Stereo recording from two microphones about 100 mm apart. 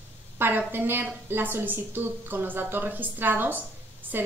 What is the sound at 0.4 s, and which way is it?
A woman's voice, 20° right (ahead or behind).